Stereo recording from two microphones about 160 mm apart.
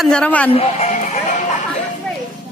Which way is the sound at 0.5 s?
45° left (ahead or behind).